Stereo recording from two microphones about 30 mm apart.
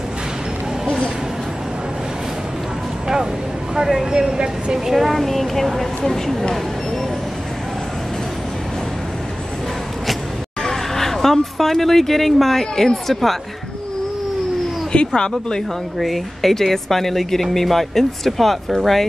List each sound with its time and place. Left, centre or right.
3.7 s speech: centre
4.7 s a woman's voice: centre
5.1 s a woman's voice: centre
10.6 s speech: centre
14.9 s speech: left
16.0 s speech: centre